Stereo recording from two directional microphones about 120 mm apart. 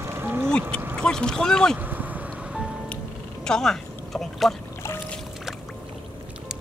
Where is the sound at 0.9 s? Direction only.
5° left (ahead or behind).